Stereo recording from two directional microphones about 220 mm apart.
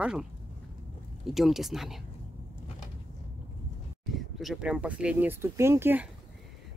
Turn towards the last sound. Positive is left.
turn(degrees=-10)  # may be behind; listen again after turning